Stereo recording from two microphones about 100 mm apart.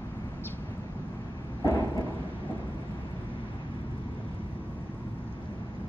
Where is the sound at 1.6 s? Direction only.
35° left (ahead or behind).